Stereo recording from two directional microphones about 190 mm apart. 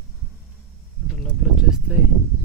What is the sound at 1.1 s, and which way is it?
Speech, centre (ahead or behind).